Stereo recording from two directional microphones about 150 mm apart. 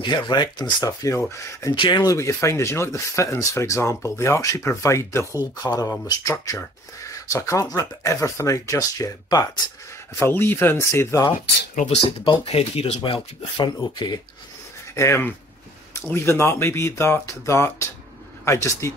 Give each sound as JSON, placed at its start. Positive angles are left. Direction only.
{"t": 0.0, "sound": "speech", "side_deg": 30}
{"t": 11.7, "sound": "speech", "side_deg": 50}
{"t": 12.0, "sound": "speech", "side_deg": 40}
{"t": 15.0, "sound": "speech", "side_deg": 15}